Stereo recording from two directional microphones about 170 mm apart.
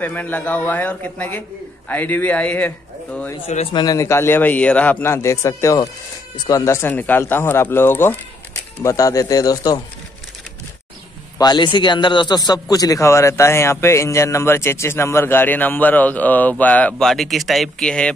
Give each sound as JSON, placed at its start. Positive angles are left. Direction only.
{"t": 0.0, "sound": "a man's voice", "side_deg": 10}
{"t": 3.7, "sound": "a man's voice", "side_deg": 20}
{"t": 11.3, "sound": "a man's voice", "side_deg": 25}